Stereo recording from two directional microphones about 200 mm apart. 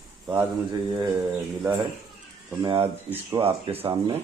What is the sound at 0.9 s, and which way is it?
Speech, 20° right (ahead or behind).